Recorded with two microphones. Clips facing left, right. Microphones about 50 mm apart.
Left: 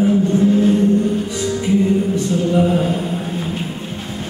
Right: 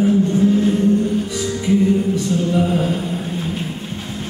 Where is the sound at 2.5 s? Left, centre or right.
Centre.